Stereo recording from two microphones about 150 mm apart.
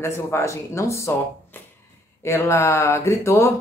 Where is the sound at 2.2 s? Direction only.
20° left (ahead or behind).